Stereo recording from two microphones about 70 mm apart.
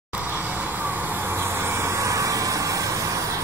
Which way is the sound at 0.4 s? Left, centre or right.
Right.